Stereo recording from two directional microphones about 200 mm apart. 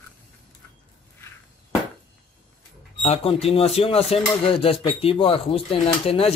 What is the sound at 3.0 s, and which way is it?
Speech, 30° left (ahead or behind).